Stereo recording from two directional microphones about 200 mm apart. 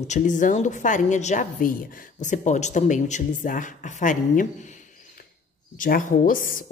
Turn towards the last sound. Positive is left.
turn(degrees=45)  # may be behind; listen again after turning